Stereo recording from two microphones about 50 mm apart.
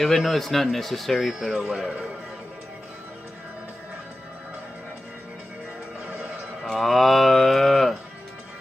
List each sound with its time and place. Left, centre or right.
0.0 s speech: centre
6.0 s a sound: right
6.6 s cattle: centre